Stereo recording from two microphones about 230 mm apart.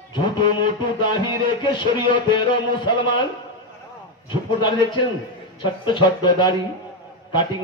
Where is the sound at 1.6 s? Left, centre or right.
Centre.